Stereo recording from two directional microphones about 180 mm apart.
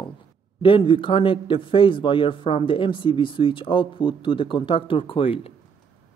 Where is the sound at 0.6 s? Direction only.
30° left (ahead or behind).